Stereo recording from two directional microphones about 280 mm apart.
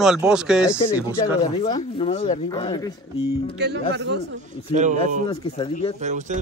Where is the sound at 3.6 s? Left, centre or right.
Right.